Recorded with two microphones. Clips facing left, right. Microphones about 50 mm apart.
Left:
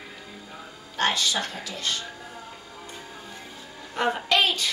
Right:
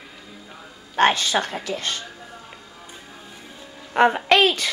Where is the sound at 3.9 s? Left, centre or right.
Right.